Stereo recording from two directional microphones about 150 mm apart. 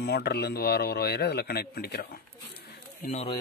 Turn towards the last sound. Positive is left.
turn(degrees=65)  # may be behind; listen again after turning